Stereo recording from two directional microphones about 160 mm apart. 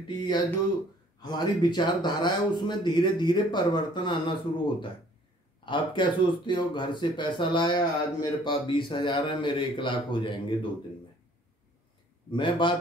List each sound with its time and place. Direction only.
1.2 s speech: 25° left (ahead or behind)
12.3 s a man's voice: 30° left (ahead or behind)